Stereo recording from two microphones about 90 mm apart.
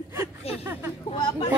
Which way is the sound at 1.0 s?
85° left.